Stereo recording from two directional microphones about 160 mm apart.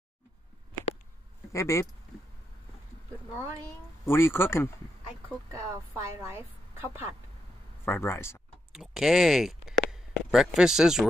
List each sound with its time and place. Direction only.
1.5 s speech: 20° left (ahead or behind)
4.0 s speech: 15° left (ahead or behind)
5.5 s a woman's voice: 20° right (ahead or behind)
7.8 s speech: 15° left (ahead or behind)
8.7 s speech: 5° right (ahead or behind)